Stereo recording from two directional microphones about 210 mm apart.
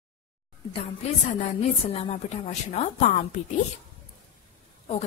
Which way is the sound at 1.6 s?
30° left (ahead or behind).